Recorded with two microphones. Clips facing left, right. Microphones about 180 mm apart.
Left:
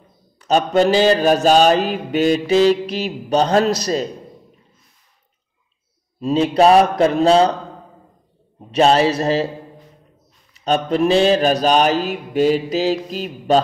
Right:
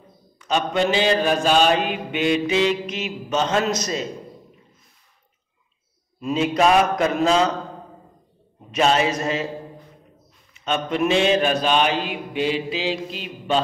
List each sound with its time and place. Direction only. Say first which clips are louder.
0.4 s mantra: left 6 dB; 35° left (ahead or behind)
6.2 s mantra: left 5 dB; 35° left (ahead or behind)
8.7 s mantra: left 5 dB; 35° left (ahead or behind)
10.5 s mantra: left 6 dB; 35° left (ahead or behind)